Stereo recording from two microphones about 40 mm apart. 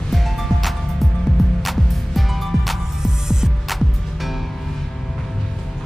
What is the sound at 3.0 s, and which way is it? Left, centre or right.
Music, centre.